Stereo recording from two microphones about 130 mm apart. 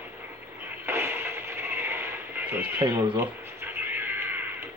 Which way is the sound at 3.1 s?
15° right (ahead or behind).